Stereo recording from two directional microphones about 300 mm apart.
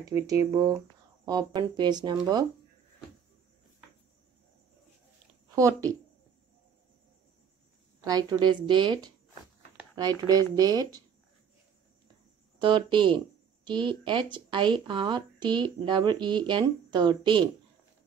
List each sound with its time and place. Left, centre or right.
0.1 s speech: centre
5.5 s a woman's voice: centre
8.0 s speech: centre
12.5 s speech: centre